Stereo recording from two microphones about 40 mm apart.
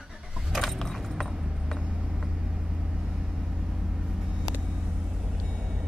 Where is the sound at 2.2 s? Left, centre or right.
Centre.